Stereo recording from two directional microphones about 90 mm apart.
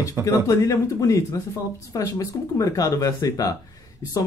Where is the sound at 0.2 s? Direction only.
25° right (ahead or behind).